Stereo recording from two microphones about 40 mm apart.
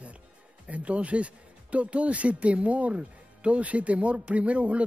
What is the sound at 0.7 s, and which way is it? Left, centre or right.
Speech, right.